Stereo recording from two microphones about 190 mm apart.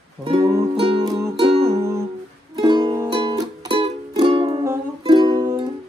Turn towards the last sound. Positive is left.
turn(degrees=-20)  # may be behind; listen again after turning